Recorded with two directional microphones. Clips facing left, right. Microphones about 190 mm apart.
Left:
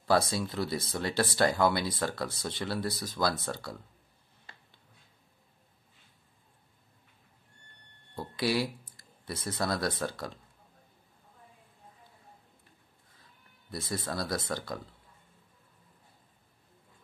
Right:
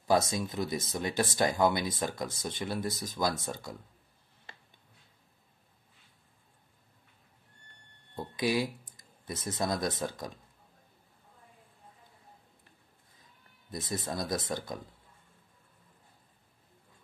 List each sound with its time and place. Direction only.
0.0 s speech: 15° right (ahead or behind)
8.2 s speech: 20° right (ahead or behind)
13.7 s speech: 20° right (ahead or behind)